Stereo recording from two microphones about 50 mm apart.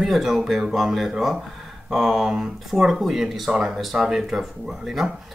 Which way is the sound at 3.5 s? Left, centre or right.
Centre.